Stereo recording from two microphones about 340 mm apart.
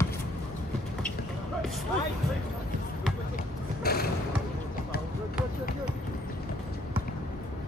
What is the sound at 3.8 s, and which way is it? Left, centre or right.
Music, left.